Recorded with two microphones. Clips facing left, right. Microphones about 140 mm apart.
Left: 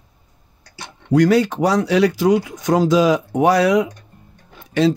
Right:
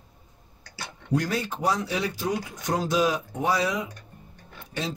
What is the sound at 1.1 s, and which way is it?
Speech, 90° left.